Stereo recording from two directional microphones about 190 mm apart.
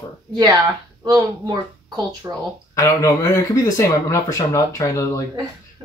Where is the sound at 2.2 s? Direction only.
15° right (ahead or behind).